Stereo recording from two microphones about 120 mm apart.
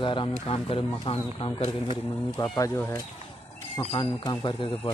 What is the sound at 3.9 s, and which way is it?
Speech, 40° left (ahead or behind).